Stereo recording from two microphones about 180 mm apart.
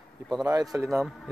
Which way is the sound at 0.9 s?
Centre (ahead or behind).